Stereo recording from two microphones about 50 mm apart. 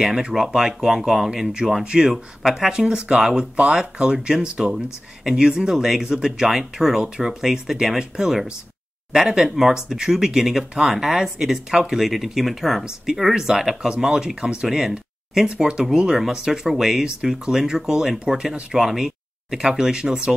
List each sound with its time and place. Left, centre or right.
0.0 s speech: centre